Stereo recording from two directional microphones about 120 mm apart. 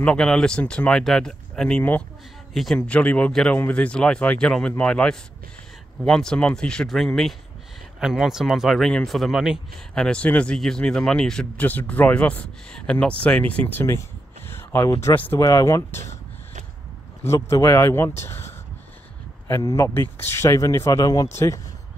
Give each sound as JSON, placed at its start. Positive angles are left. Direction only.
{"t": 0.0, "sound": "speech", "side_deg": 5}
{"t": 9.9, "sound": "speech", "side_deg": 5}
{"t": 17.3, "sound": "a man's voice", "side_deg": 20}